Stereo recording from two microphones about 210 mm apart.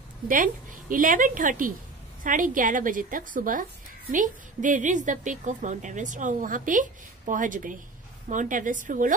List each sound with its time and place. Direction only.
0.3 s a woman's voice: 40° right (ahead or behind)